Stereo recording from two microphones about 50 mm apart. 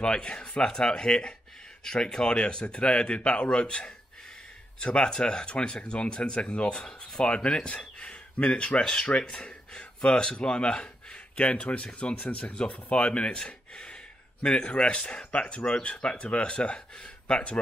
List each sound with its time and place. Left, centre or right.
0.0 s speech: centre